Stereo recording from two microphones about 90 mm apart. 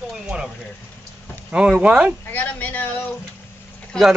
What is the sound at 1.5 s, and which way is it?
Speech, 15° right (ahead or behind).